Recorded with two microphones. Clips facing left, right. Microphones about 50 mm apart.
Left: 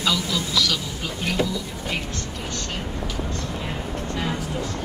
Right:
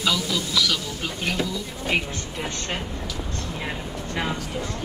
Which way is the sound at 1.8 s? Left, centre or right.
Right.